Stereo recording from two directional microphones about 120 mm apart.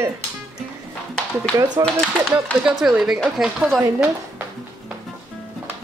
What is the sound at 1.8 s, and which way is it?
Speech, 30° right (ahead or behind).